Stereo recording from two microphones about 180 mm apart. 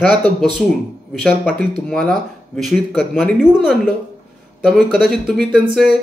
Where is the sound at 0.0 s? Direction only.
5° left (ahead or behind).